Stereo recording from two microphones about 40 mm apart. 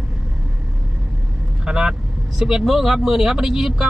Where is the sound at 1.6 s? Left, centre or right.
Centre.